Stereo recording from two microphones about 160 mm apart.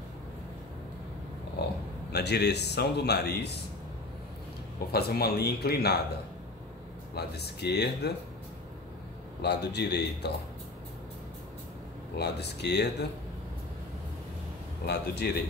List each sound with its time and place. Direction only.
1.6 s a man's voice: 90° left
4.9 s speech: 75° left (ahead or behind)
7.2 s a man's voice: 90° left
9.4 s a man's voice: 90° left
12.2 s a man's voice: 90° left
14.9 s a man's voice: 90° left